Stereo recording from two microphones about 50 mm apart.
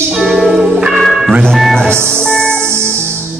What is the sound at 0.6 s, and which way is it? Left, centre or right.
Music, centre.